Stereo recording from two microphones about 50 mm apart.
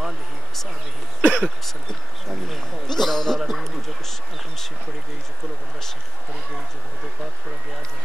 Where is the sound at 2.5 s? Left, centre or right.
Centre.